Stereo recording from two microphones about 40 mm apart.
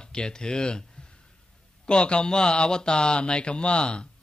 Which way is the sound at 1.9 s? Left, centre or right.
Left.